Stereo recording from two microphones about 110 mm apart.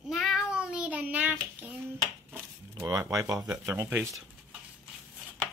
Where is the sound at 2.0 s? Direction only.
30° right (ahead or behind).